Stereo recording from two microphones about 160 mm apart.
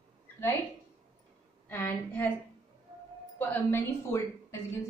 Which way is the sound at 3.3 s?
15° left (ahead or behind).